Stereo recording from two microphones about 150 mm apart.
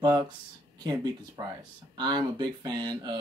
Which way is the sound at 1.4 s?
25° right (ahead or behind).